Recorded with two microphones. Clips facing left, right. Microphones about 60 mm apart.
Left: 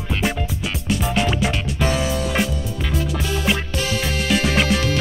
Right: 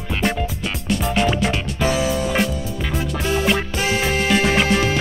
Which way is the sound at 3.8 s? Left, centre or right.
Right.